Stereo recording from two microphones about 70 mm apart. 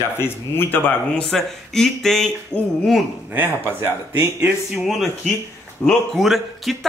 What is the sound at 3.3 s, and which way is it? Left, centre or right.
Speech, right.